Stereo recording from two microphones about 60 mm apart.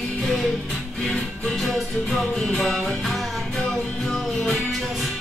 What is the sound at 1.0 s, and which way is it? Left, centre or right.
Music, centre.